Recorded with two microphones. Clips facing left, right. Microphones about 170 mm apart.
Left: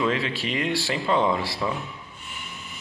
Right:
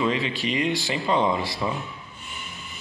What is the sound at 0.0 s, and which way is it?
Speech, centre (ahead or behind).